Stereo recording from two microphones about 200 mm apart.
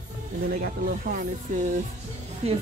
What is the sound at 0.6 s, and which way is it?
Speech, 45° right (ahead or behind).